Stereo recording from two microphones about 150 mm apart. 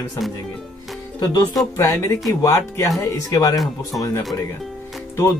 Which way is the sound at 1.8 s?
20° left (ahead or behind).